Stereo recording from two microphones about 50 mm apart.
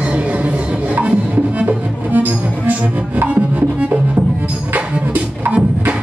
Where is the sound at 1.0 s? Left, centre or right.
Right.